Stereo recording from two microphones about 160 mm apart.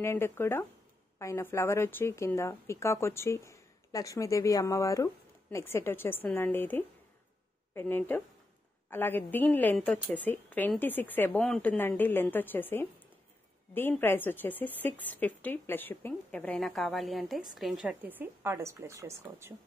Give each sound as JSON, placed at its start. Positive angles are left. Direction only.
{"t": 0.0, "sound": "a woman's voice", "side_deg": 15}